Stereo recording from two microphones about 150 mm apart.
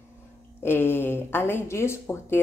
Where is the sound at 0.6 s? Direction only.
15° left (ahead or behind).